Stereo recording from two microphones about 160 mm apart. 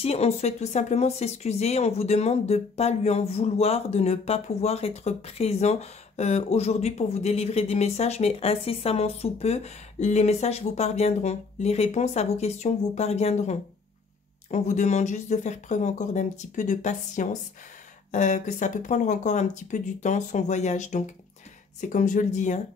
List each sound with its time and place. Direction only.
0.0 s speech: 40° left (ahead or behind)